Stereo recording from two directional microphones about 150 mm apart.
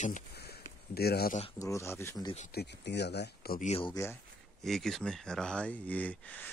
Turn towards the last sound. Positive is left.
turn(degrees=10)  # may be behind; listen again after turning